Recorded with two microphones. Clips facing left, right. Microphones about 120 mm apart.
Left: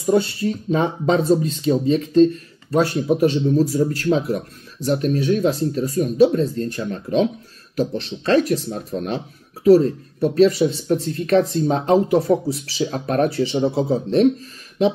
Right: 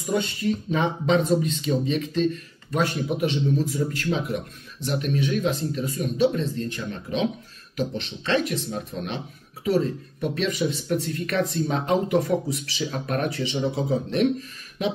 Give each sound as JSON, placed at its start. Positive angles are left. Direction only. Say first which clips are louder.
{"t": 0.0, "sound": "speech", "louder": "left 7 dB", "side_deg": 35}